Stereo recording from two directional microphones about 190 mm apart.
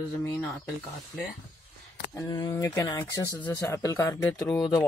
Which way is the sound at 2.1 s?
15° left (ahead or behind).